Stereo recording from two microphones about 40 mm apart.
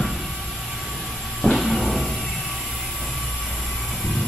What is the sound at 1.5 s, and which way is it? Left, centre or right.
Music, centre.